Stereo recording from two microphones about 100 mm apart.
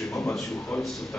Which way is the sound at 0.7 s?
10° left (ahead or behind).